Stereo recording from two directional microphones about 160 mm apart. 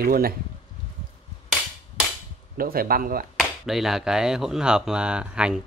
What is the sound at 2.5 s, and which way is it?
Speech, 65° right (ahead or behind).